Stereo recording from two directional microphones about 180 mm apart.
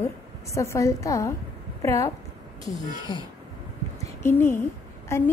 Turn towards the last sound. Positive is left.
turn(degrees=15)  # may be behind; listen again after turning